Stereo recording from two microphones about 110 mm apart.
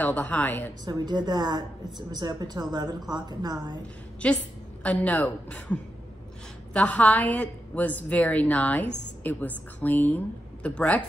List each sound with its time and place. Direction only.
0.0 s a woman's voice: 15° left (ahead or behind)
0.8 s a woman's voice: 40° right (ahead or behind)
4.2 s a woman's voice: 10° left (ahead or behind)